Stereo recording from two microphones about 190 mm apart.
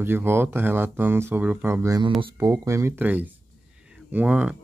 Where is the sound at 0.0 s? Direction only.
10° right (ahead or behind).